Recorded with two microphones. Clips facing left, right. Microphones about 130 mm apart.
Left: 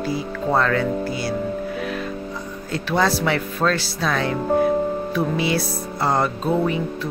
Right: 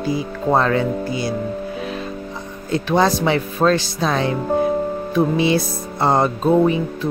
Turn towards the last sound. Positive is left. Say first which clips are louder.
# right 5 dB
turn(degrees=-20)  # may be behind; listen again after turning